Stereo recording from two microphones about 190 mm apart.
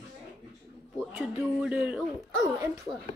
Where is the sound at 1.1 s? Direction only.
5° right (ahead or behind).